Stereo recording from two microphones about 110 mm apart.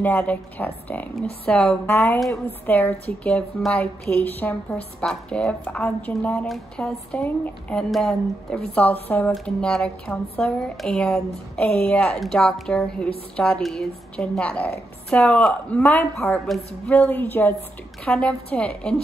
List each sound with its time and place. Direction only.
0.0 s a woman's voice: 15° left (ahead or behind)
7.9 s a woman's voice: 5° left (ahead or behind)
16.4 s a woman's voice: centre (ahead or behind)
16.9 s a woman's voice: 15° left (ahead or behind)